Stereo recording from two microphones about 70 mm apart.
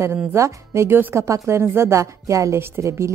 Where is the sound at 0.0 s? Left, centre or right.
Right.